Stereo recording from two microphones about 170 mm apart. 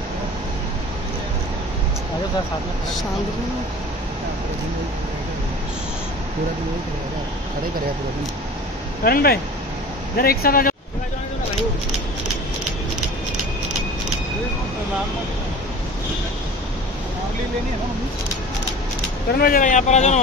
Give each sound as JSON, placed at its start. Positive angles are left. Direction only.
{"t": 9.0, "sound": "speech", "side_deg": 65}
{"t": 19.3, "sound": "speech", "side_deg": 60}